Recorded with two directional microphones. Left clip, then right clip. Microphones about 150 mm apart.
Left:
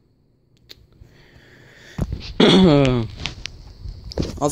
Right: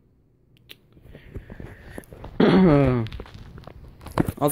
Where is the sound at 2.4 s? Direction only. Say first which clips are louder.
Left 4 dB; 55° left (ahead or behind).